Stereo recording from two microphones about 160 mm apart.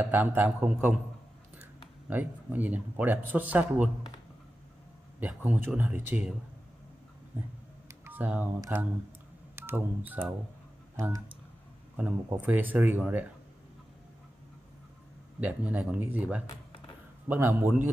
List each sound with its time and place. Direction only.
0.0 s speech: 10° right (ahead or behind)
2.0 s speech: 10° right (ahead or behind)
5.2 s speech: 10° right (ahead or behind)
7.9 s a sound: 15° right (ahead or behind)
8.5 s speech: 15° right (ahead or behind)
9.6 s telephone dialing: 15° right (ahead or behind)
11.0 s speech: 15° right (ahead or behind)
12.3 s speech: 10° right (ahead or behind)
15.4 s speech: 10° right (ahead or behind)